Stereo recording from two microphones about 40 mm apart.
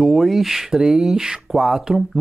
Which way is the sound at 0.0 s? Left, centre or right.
Centre.